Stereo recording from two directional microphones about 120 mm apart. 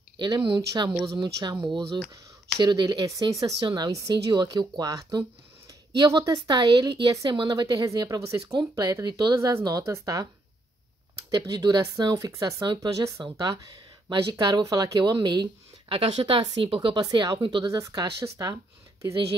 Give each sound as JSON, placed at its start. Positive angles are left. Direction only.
{"t": 0.2, "sound": "speech", "side_deg": -45}
{"t": 3.9, "sound": "speech", "side_deg": -25}
{"t": 4.3, "sound": "speech", "side_deg": -40}
{"t": 11.5, "sound": "speech", "side_deg": -35}
{"t": 16.0, "sound": "speech", "side_deg": -55}
{"t": 16.3, "sound": "speech", "side_deg": -45}
{"t": 17.0, "sound": "speech", "side_deg": -30}
{"t": 17.4, "sound": "speech", "side_deg": -45}
{"t": 17.6, "sound": "speech", "side_deg": -25}